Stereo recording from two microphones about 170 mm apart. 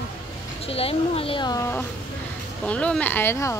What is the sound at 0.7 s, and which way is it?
Speech, 35° left (ahead or behind).